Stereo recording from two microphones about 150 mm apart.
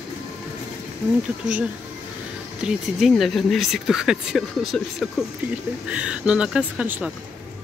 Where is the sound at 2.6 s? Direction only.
Centre (ahead or behind).